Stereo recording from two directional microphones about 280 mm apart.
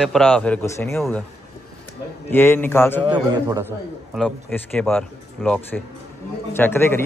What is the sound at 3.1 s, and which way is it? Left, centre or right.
Speech, centre.